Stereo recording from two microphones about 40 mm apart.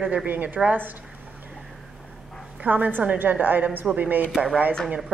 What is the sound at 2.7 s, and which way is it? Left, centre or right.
A woman's voice, right.